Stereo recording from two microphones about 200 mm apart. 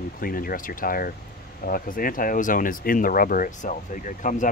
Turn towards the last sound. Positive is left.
turn(degrees=40)  # may be behind; listen again after turning